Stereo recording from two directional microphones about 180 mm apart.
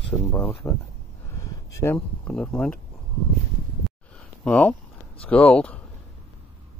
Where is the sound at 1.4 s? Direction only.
15° left (ahead or behind).